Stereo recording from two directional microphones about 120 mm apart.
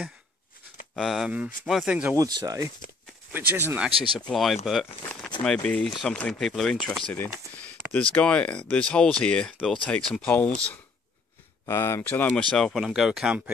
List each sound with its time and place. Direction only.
0.9 s speech: centre (ahead or behind)
2.1 s speech: 30° right (ahead or behind)
3.3 s speech: 15° right (ahead or behind)
4.3 s speech: centre (ahead or behind)
11.6 s speech: 20° left (ahead or behind); by 13.4 s 5° right (ahead or behind)